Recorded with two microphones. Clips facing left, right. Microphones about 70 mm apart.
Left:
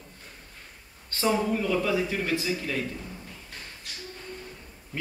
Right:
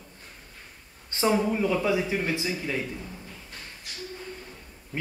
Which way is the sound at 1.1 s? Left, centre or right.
Centre.